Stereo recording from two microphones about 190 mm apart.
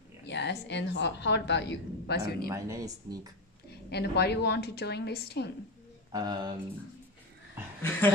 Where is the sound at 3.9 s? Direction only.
60° left (ahead or behind).